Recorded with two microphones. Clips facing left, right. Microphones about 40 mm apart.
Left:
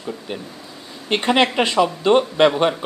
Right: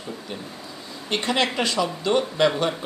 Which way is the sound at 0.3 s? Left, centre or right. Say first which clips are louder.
Left 3 dB; left.